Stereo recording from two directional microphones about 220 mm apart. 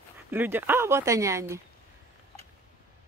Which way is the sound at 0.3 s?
10° right (ahead or behind).